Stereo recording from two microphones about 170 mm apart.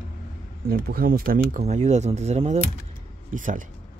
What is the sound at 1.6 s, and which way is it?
Speech, 40° right (ahead or behind).